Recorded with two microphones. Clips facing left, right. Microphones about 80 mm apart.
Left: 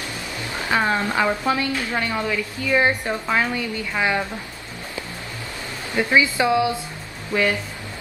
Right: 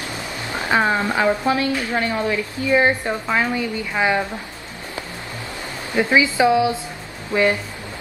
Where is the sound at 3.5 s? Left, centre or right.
Centre.